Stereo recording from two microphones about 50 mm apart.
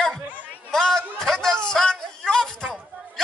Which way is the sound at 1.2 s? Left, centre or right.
Centre.